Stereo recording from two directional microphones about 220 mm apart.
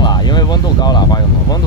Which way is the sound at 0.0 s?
20° left (ahead or behind).